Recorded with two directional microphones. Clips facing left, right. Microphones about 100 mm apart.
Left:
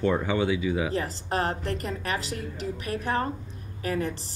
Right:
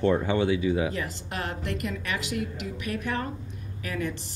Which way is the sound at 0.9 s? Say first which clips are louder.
Left 4 dB; 35° left (ahead or behind).